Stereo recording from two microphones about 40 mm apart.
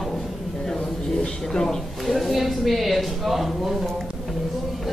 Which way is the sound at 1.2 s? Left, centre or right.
Centre.